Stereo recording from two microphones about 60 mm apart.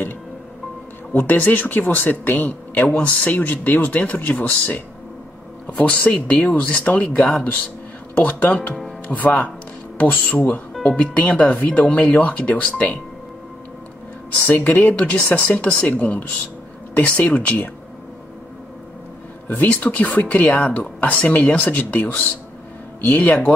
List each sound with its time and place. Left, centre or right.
1.1 s speech: left
12.7 s speech: left
14.5 s speech: left
19.5 s speech: left